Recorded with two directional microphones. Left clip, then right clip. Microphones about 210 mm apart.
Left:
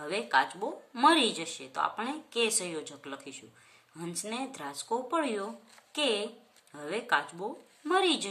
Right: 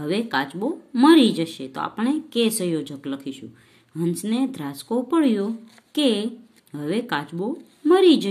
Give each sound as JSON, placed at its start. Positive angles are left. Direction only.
{"t": 0.0, "sound": "speech", "side_deg": -20}